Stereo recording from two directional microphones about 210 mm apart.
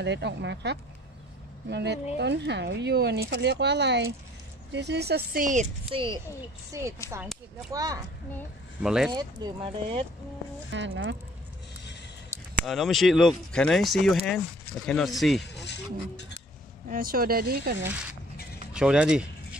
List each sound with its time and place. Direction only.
0.0 s a woman's voice: 55° right (ahead or behind); by 6.2 s 25° right (ahead or behind)
7.1 s speech: 15° right (ahead or behind)
8.8 s speech: centre (ahead or behind)
9.1 s speech: 20° right (ahead or behind)
10.7 s speech: 60° right (ahead or behind)
12.3 s a sound: 10° right (ahead or behind)
12.6 s speech: centre (ahead or behind)
15.4 s speech: 55° left (ahead or behind)
16.9 s speech: 45° right (ahead or behind)
18.7 s speech: 5° right (ahead or behind)